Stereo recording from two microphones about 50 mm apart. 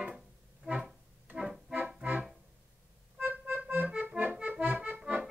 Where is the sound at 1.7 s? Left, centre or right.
Right.